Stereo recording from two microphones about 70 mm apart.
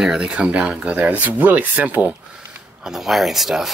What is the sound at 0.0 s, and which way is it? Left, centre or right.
Speech, centre.